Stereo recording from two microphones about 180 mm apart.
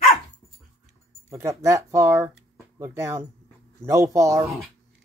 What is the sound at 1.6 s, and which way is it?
Speech, 15° right (ahead or behind).